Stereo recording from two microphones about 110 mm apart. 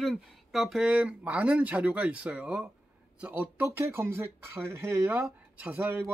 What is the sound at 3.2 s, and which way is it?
Speech, 15° right (ahead or behind).